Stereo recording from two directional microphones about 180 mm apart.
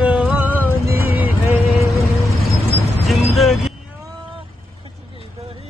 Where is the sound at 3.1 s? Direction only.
Centre (ahead or behind).